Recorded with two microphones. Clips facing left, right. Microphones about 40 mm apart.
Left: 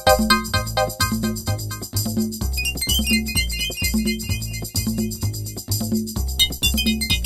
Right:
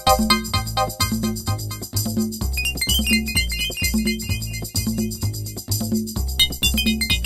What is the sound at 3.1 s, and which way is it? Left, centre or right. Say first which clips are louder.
Music: even; centre.